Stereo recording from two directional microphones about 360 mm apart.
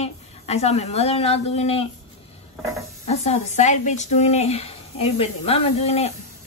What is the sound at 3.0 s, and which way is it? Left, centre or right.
Speech, centre.